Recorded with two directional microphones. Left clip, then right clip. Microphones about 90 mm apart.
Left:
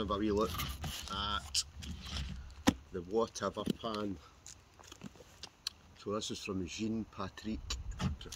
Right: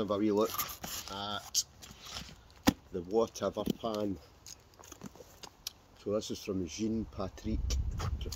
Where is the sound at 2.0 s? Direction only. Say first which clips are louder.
Right 1 dB; 60° right (ahead or behind).